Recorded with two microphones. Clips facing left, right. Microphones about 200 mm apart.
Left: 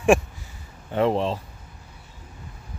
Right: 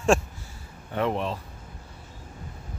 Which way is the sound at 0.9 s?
30° left (ahead or behind).